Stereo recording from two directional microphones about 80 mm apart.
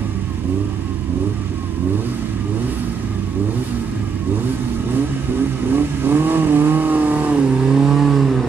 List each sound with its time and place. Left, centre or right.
5.8 s vehicle: right; by 8.5 s centre